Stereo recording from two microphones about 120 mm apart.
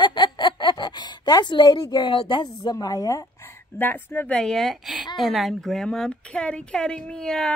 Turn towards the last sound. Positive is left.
turn(degrees=5)  # may be behind; listen again after turning